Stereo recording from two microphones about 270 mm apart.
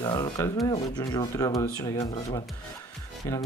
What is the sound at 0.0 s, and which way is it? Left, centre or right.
Speech, centre.